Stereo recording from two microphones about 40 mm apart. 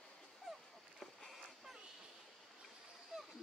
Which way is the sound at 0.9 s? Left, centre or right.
Centre.